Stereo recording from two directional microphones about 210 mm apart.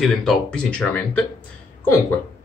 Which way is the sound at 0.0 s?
Centre (ahead or behind).